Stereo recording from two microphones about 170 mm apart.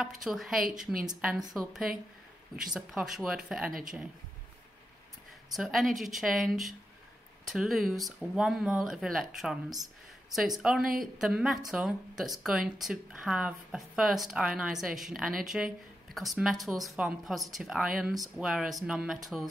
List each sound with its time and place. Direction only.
0.2 s a woman's voice: centre (ahead or behind)
5.5 s speech: centre (ahead or behind)
10.6 s speech: 5° right (ahead or behind)